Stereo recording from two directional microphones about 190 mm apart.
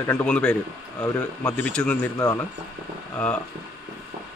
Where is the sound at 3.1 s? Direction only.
5° left (ahead or behind).